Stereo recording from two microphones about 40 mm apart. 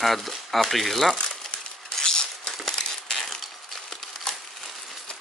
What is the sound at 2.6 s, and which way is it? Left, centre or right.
Crushing, centre.